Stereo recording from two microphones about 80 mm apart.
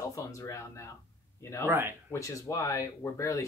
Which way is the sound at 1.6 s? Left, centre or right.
Right.